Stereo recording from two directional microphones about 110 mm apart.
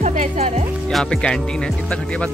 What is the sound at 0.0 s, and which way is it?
Music, 90° right.